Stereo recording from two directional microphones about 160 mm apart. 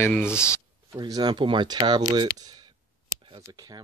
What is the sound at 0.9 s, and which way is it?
Speech, 25° right (ahead or behind).